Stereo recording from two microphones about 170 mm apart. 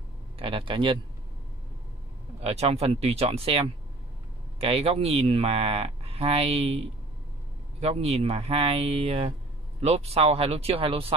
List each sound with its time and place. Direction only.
0.4 s speech: 30° right (ahead or behind)
2.4 s speech: 35° right (ahead or behind)